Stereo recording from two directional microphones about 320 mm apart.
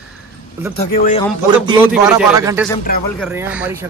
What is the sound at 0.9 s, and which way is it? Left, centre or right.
Speech, left.